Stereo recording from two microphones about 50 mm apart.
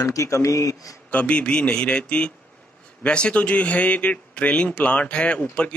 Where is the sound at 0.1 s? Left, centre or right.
Left.